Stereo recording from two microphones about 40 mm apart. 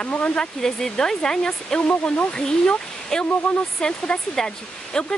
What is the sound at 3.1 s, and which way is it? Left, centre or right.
Speech, centre.